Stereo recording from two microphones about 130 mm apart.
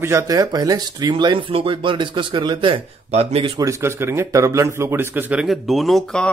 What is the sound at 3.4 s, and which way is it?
Speech, 30° right (ahead or behind).